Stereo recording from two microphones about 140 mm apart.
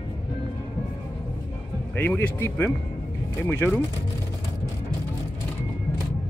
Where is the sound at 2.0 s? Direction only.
15° left (ahead or behind).